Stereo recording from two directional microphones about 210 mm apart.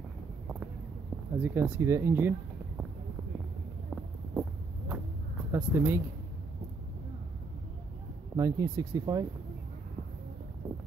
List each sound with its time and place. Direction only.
1.4 s speech: 10° right (ahead or behind)
3.9 s a sound: 5° right (ahead or behind)
5.5 s speech: 10° right (ahead or behind)
8.4 s speech: 15° right (ahead or behind)